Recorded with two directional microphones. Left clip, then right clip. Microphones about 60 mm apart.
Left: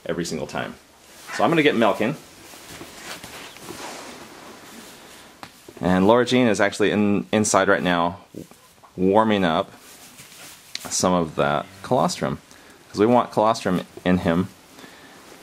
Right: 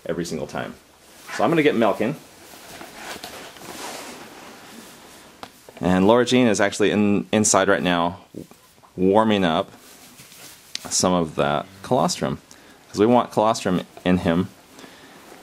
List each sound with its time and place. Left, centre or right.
0.0 s speech: centre
2.6 s a sound: centre
5.8 s speech: centre
10.8 s speech: centre